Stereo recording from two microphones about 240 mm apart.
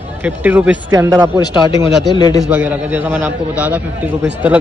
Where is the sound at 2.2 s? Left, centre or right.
Centre.